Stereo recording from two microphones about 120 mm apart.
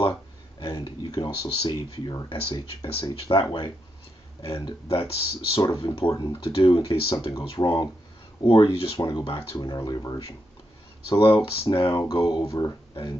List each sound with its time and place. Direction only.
0.6 s speech: 40° left (ahead or behind)
11.1 s speech: 50° left (ahead or behind)